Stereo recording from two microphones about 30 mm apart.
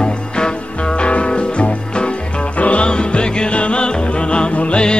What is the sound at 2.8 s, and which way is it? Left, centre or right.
Music, left.